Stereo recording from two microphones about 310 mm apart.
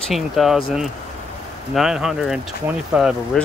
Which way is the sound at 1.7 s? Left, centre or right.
Centre.